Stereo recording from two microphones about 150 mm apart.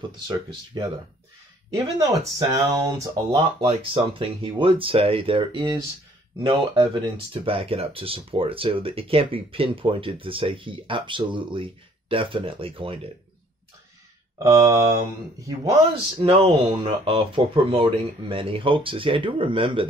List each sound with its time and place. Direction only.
0.7 s speech: 30° right (ahead or behind)
3.3 s speech: 35° right (ahead or behind)
14.4 s speech: 20° right (ahead or behind)
16.2 s speech: 35° right (ahead or behind)